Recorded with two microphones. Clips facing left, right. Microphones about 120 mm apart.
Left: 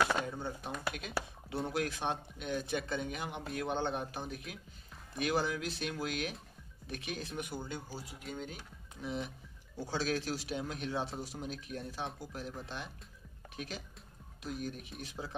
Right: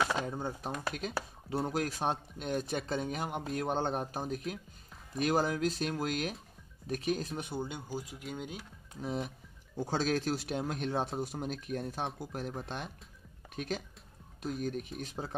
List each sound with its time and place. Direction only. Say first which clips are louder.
0.2 s speech: right 3 dB; 40° right (ahead or behind)
7.4 s speech: right 3 dB; 20° right (ahead or behind)
9.0 s speech: right 3 dB; 45° right (ahead or behind)